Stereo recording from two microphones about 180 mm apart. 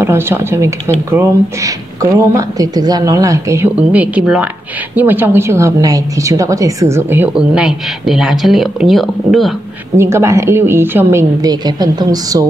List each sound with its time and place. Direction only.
0.0 s a woman's voice: 15° right (ahead or behind)
9.9 s a woman's voice: 15° right (ahead or behind)